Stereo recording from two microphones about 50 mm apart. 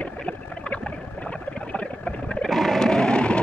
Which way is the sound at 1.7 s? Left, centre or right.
Left.